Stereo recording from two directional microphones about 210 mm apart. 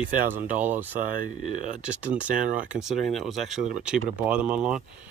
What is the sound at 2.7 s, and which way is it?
Speech, centre (ahead or behind).